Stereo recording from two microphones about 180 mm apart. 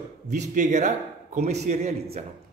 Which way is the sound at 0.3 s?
45° right (ahead or behind).